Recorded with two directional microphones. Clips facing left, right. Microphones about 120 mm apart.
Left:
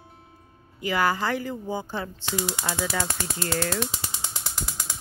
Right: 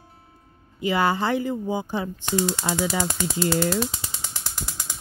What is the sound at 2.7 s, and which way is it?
A woman's voice, 25° right (ahead or behind).